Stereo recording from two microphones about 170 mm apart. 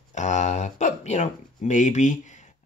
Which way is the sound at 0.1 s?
45° left (ahead or behind).